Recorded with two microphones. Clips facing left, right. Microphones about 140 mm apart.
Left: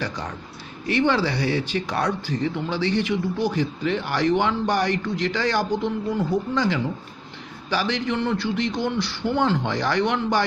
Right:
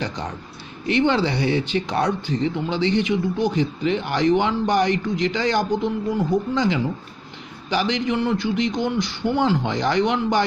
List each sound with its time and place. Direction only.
0.0 s a man's voice: 20° right (ahead or behind)